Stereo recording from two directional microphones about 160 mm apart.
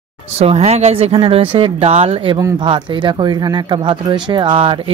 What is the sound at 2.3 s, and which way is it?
Speech, 25° right (ahead or behind).